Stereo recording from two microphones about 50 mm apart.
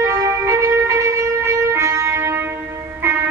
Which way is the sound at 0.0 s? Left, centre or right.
Right.